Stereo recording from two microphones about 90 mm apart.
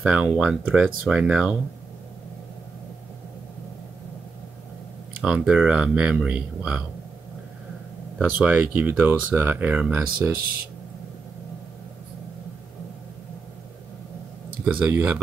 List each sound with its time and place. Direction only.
0.0 s speech: 10° right (ahead or behind)
5.2 s speech: 10° right (ahead or behind)
8.2 s speech: 15° right (ahead or behind)
14.6 s speech: 20° right (ahead or behind)